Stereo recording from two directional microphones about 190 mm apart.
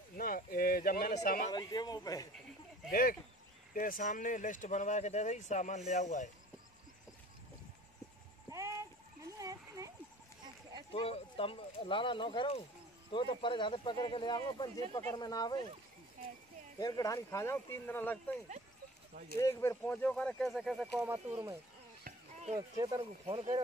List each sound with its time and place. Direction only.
0.2 s a sound: 50° left (ahead or behind)
1.5 s speech: 20° left (ahead or behind)
2.9 s speech: 50° left (ahead or behind)
8.5 s sheep: 15° right (ahead or behind)
10.9 s speech: 30° left (ahead or behind)
16.7 s speech: 20° left (ahead or behind)
19.3 s speech: 15° left (ahead or behind); by 21.2 s 5° right (ahead or behind)
22.0 s a sound: 35° right (ahead or behind)
22.8 s speech: 20° right (ahead or behind)
23.2 s speech: 35° right (ahead or behind)